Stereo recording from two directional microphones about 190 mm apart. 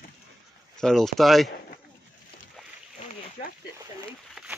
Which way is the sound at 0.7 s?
Centre (ahead or behind).